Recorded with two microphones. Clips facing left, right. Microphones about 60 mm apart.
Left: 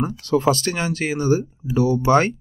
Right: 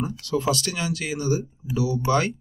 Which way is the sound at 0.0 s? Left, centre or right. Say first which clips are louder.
Left 6 dB; left.